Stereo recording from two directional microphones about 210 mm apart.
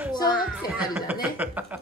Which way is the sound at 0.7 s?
10° right (ahead or behind).